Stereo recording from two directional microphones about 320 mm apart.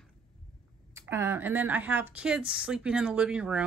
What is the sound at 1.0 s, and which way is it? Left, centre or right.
Speech, centre.